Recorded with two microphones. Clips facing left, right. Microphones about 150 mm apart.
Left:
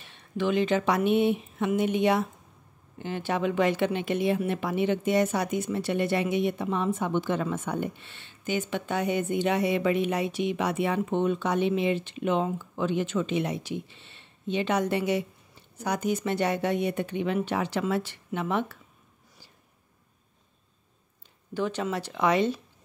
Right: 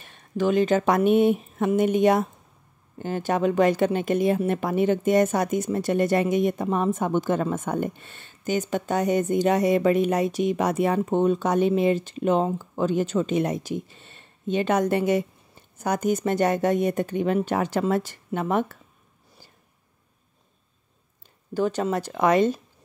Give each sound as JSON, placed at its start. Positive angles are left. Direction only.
{"t": 0.0, "sound": "speech", "side_deg": -45}
{"t": 21.5, "sound": "speech", "side_deg": -40}